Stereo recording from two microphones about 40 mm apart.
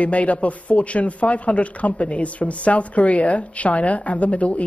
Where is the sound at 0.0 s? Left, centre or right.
Left.